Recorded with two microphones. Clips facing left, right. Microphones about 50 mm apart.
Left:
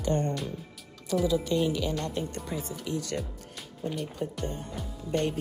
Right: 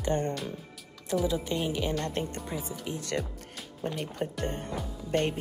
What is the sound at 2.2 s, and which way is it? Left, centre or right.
Speech, right.